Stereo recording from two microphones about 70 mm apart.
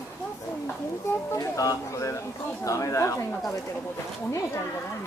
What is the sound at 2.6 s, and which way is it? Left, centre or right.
Speech, left.